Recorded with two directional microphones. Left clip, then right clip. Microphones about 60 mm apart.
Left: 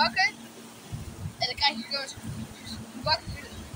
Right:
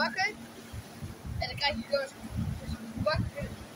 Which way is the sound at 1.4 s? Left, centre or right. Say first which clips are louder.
Left 5 dB; right.